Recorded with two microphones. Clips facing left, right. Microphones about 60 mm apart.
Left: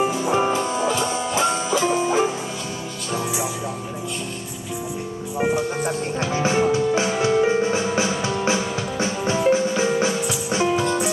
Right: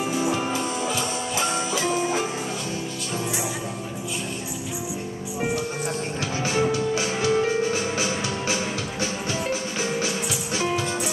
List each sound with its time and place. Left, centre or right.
0.3 s music: left
6.3 s music: left